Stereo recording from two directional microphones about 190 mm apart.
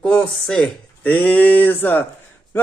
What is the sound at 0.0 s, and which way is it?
A man's voice, 5° left (ahead or behind).